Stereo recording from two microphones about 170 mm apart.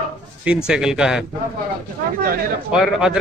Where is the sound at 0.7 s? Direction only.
5° right (ahead or behind).